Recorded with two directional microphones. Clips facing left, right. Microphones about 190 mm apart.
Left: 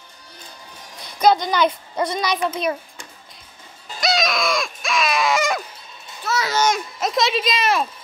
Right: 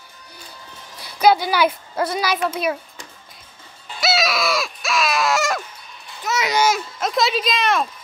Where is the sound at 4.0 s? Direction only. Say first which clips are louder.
Even; 5° right (ahead or behind).